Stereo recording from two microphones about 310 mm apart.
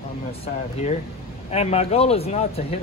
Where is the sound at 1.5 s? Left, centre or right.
Left.